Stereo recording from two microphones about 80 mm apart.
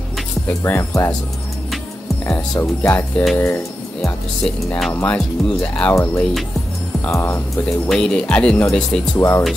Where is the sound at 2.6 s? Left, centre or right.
Left.